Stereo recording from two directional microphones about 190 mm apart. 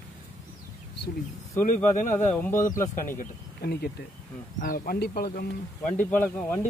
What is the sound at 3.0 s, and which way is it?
Speech, 45° left (ahead or behind).